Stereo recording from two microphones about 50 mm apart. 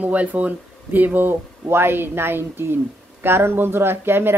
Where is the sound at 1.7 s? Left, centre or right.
Right.